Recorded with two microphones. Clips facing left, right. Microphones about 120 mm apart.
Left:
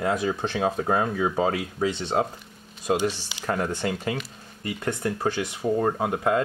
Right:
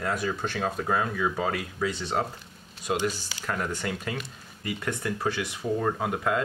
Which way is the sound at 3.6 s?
25° left (ahead or behind).